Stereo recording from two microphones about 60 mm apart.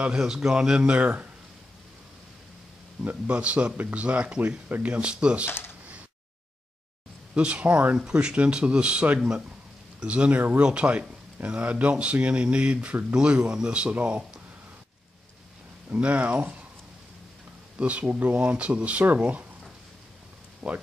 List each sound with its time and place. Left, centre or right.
0.2 s speech: centre
3.3 s speech: right
7.3 s speech: centre
15.9 s speech: right
17.7 s speech: right
20.6 s speech: centre